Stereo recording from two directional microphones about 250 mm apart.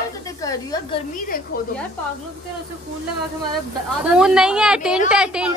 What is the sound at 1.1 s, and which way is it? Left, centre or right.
Speech, left.